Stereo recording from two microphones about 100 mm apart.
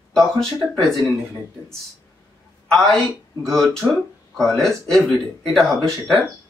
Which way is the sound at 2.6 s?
5° left (ahead or behind).